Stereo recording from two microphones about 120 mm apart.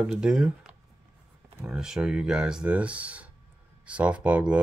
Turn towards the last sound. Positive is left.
turn(degrees=-10)  # may be behind; listen again after turning